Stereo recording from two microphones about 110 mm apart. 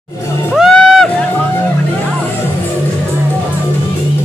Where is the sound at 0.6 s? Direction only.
Centre (ahead or behind).